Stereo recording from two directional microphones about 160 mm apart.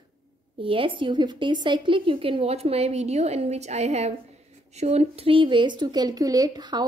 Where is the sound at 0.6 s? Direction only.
35° right (ahead or behind).